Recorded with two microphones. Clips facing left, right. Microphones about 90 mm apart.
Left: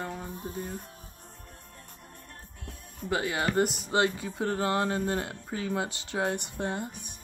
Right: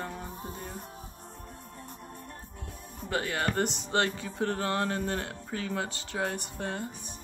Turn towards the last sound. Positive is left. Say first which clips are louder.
# left 2 dB
turn(degrees=15)  # may be behind; listen again after turning